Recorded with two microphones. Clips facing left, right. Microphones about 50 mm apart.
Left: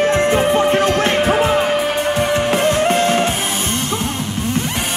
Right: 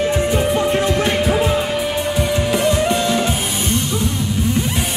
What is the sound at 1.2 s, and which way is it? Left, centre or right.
Music, left.